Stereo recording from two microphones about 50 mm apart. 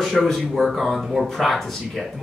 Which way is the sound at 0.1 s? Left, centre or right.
Centre.